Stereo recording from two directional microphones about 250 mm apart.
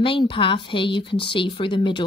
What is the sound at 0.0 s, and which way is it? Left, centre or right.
A woman's voice, left.